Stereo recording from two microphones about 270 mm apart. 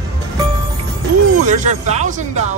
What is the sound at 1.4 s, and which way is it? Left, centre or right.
Speech, right.